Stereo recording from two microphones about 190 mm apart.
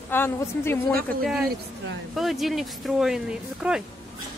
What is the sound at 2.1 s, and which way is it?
Speech, centre (ahead or behind).